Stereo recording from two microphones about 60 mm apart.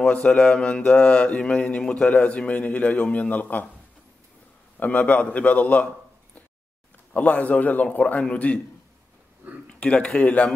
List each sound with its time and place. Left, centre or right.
0.0 s mantra: centre
4.7 s a man's voice: left
7.2 s a man's voice: left
9.7 s speech: centre